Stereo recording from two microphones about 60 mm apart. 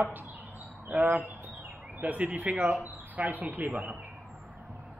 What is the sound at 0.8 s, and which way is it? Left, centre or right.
Speech, right.